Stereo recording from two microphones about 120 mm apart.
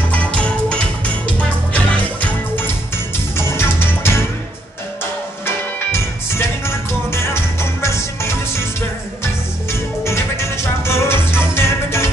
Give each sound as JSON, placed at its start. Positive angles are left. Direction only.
{"t": 0.1, "sound": "music", "side_deg": 10}
{"t": 5.8, "sound": "music", "side_deg": 20}